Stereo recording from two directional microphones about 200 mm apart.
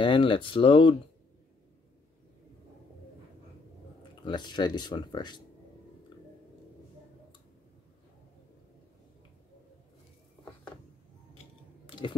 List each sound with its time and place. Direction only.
0.0 s speech: 25° left (ahead or behind)
4.2 s speech: 20° left (ahead or behind)
11.8 s clicking: 25° left (ahead or behind)